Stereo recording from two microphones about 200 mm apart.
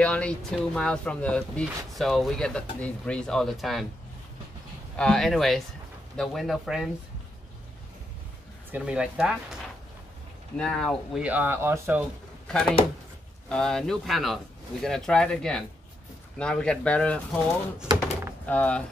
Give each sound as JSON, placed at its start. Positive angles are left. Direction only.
{"t": 0.0, "sound": "speech", "side_deg": 5}
{"t": 4.9, "sound": "speech", "side_deg": 0}
{"t": 8.7, "sound": "speech", "side_deg": -5}
{"t": 10.6, "sound": "speech", "side_deg": 5}
{"t": 12.4, "sound": "speech", "side_deg": 5}